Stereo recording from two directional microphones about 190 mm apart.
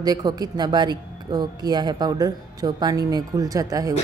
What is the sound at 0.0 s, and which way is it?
A woman's voice, 20° right (ahead or behind).